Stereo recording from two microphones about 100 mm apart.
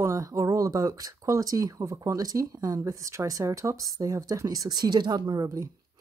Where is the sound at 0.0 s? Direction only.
35° right (ahead or behind).